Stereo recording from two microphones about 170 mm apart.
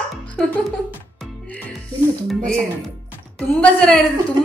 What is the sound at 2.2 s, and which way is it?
Speech, centre (ahead or behind).